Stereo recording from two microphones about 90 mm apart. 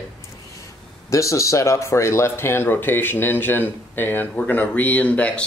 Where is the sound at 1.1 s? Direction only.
35° left (ahead or behind).